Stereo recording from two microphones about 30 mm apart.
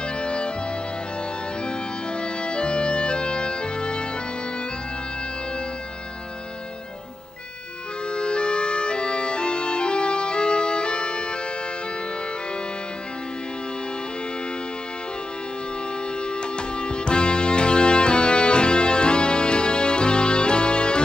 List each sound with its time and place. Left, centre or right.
0.0 s music: left
1.6 s music: left
8.1 s music: left
16.2 s music: left